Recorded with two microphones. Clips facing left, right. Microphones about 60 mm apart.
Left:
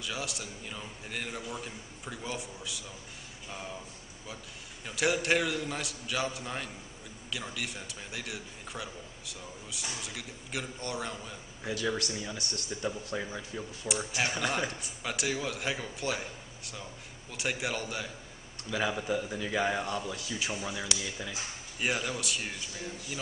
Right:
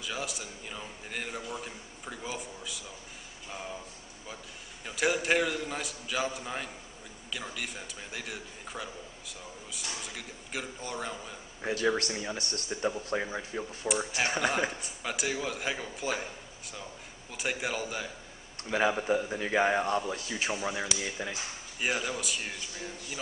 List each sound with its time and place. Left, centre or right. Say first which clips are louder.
0.0 s a man's voice: right 1 dB; centre
4.8 s a man's voice: even; centre
11.6 s speech: right 4 dB; right
13.8 s a man's voice: right 2 dB; centre
18.7 s speech: right 4 dB; right
18.9 s speech: right 3 dB; centre
21.7 s a man's voice: even; centre